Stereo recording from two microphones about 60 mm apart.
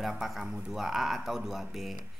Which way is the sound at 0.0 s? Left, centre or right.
Centre.